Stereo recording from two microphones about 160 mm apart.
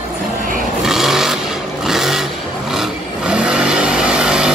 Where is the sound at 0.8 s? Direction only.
Centre (ahead or behind).